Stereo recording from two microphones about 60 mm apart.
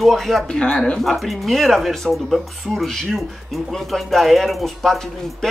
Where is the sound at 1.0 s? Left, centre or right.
Centre.